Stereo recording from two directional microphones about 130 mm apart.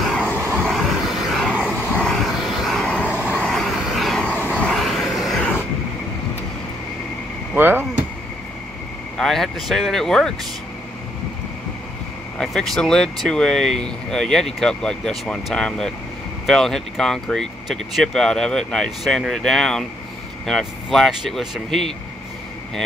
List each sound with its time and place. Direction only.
0.6 s vehicle: centre (ahead or behind)
2.0 s vehicle: 5° left (ahead or behind)
7.5 s a sound: 15° right (ahead or behind)
9.1 s speech: 5° left (ahead or behind)
12.4 s speech: 5° left (ahead or behind)